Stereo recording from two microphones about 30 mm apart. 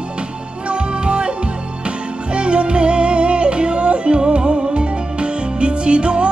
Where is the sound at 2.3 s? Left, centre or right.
Right.